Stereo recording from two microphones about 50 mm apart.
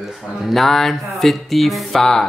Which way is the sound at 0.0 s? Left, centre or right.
Centre.